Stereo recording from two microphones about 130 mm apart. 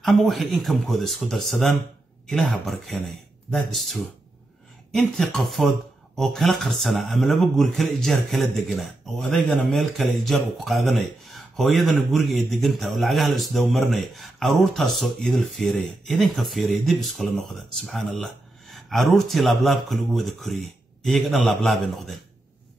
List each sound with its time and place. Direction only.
0.0 s speech: centre (ahead or behind)